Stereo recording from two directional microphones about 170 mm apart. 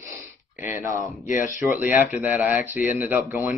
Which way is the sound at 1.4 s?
15° right (ahead or behind).